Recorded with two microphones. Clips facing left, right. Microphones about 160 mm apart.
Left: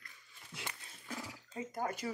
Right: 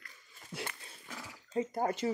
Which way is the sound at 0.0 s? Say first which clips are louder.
Right 2 dB; 40° right (ahead or behind).